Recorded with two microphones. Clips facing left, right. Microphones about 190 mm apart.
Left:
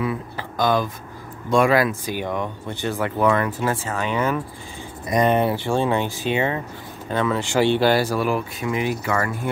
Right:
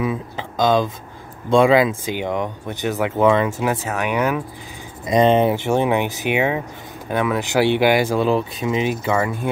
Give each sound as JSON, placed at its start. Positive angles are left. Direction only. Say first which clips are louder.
{"t": 0.0, "sound": "a sound", "louder": "right 2 dB", "side_deg": -20}
{"t": 1.5, "sound": "speech", "louder": "right 4 dB", "side_deg": -25}
{"t": 5.0, "sound": "speech", "louder": "right 4 dB", "side_deg": -25}